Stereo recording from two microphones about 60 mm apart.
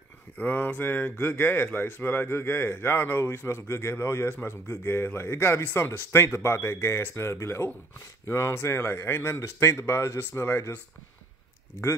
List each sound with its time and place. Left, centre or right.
0.4 s speech: left